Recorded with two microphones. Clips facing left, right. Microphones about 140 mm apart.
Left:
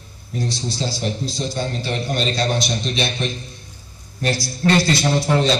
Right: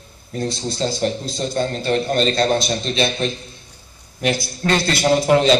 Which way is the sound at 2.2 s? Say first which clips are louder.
Right 2 dB; 45° right (ahead or behind).